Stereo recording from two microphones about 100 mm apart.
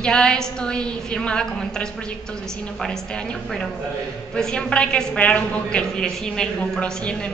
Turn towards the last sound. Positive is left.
turn(degrees=5)  # may be behind; listen again after turning